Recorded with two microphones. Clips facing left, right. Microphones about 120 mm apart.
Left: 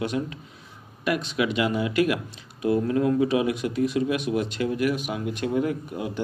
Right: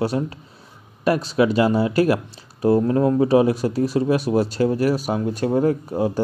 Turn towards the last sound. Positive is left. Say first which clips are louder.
# right 7 dB
turn(degrees=-35)  # may be behind; listen again after turning